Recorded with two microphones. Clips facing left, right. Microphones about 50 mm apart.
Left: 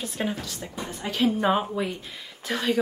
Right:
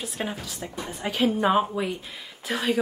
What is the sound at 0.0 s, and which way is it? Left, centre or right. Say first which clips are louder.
A woman's voice: left 2 dB; centre.